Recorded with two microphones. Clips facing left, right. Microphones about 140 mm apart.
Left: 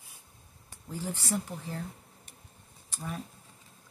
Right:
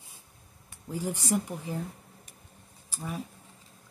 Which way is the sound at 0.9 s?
15° right (ahead or behind).